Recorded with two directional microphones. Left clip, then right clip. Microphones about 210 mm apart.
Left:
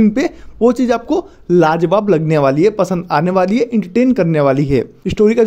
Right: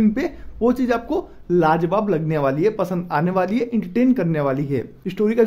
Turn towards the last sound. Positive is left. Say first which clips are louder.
# left 8 dB
turn(degrees=35)  # may be behind; listen again after turning